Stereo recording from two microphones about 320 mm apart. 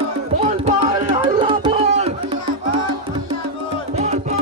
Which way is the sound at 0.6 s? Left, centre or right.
Centre.